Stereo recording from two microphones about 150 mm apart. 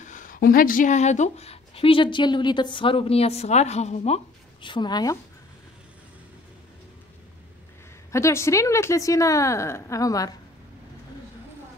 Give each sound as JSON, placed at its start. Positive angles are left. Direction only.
{"t": 0.0, "sound": "speech", "side_deg": 60}
{"t": 8.1, "sound": "a woman's voice", "side_deg": 20}